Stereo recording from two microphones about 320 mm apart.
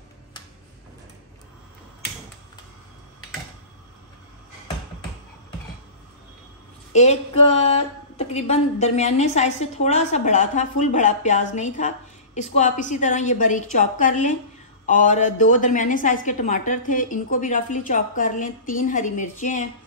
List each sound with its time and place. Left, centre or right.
6.9 s a woman's voice: left